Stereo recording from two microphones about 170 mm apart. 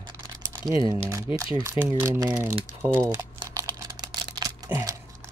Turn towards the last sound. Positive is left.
turn(degrees=-20)  # may be behind; listen again after turning